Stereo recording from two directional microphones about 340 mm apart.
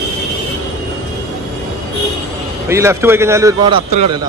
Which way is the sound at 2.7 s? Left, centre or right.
Centre.